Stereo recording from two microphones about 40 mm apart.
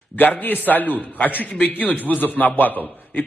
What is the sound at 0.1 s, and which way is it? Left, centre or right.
A man's voice, left.